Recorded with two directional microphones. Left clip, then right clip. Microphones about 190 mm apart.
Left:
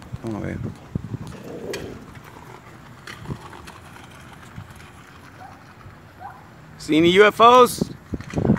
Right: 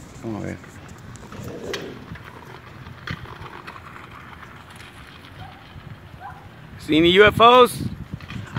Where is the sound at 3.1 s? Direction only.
60° left (ahead or behind).